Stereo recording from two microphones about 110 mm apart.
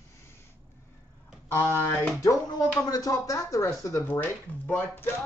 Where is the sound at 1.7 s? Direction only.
25° left (ahead or behind).